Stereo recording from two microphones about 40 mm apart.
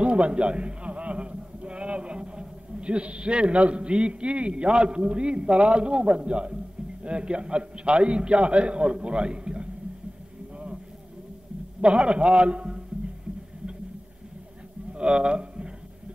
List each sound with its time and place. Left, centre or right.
0.0 s a man's voice: right
11.8 s a man's voice: right
14.9 s a sound: right